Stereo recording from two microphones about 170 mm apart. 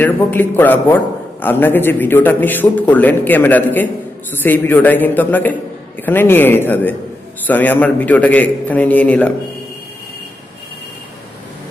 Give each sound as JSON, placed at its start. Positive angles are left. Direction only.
{"t": 0.0, "sound": "a man's voice", "side_deg": 10}